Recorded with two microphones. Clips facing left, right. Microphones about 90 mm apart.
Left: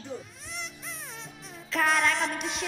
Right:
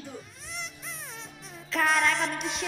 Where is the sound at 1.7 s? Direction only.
Centre (ahead or behind).